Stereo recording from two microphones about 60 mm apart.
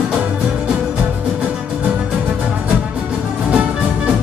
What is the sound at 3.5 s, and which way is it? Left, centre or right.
Music, right.